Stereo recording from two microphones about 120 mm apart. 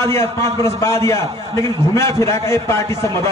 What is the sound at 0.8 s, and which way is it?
A man's voice, 25° left (ahead or behind).